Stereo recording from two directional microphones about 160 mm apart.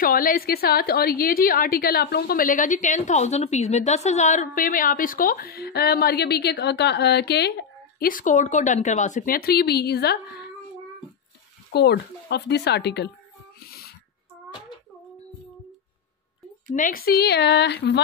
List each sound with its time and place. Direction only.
0.0 s a woman's voice: 60° left (ahead or behind); by 10.1 s 90° left
11.7 s speech: 90° left
13.6 s a sound: 70° left (ahead or behind)
16.7 s speech: 60° left (ahead or behind); by 18.0 s 90° left